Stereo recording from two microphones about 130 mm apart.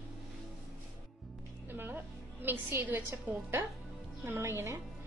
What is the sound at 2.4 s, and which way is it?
A woman's voice, 15° right (ahead or behind).